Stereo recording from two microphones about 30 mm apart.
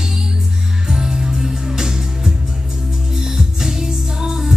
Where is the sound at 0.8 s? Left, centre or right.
Right.